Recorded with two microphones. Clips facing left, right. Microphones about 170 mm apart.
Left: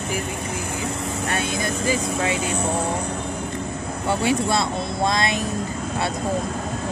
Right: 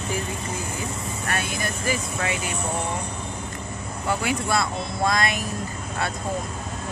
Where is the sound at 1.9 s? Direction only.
20° left (ahead or behind).